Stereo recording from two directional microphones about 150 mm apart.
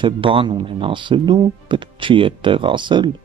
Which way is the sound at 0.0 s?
35° right (ahead or behind).